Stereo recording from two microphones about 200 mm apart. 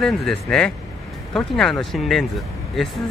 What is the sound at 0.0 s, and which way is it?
Speech, 5° left (ahead or behind).